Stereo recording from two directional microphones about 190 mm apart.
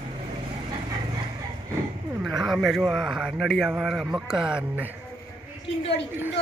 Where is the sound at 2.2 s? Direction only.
Centre (ahead or behind).